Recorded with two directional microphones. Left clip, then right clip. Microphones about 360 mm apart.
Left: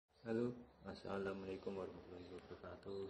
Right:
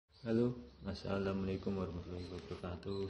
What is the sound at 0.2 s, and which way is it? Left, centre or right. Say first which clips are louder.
A man's voice: right 7 dB; centre.